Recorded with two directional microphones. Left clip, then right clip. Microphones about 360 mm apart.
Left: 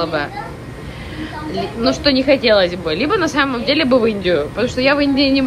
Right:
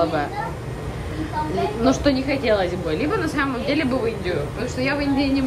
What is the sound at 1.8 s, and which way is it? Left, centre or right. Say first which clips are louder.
A woman's voice: left 6 dB; centre.